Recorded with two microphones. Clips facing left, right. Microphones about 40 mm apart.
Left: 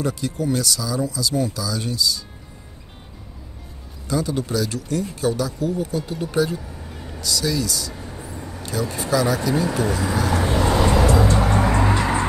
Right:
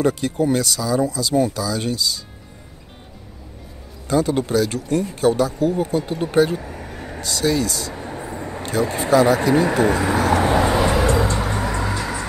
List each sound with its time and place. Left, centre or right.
0.0 s speech: right
4.1 s speech: right
10.8 s vehicle: centre
11.5 s music: left